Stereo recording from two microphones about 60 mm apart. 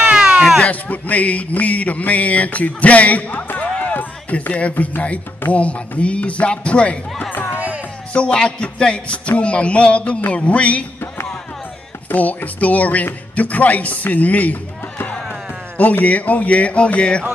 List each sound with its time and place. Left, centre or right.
0.0 s cat: centre
0.6 s speech: left
3.6 s music: centre
3.9 s speech: left
7.3 s music: left
8.1 s speech: centre
12.1 s speech: left